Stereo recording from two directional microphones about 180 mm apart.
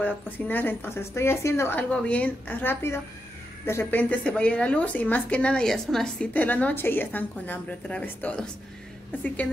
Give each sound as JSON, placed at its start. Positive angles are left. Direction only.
{"t": 0.0, "sound": "speech", "side_deg": 10}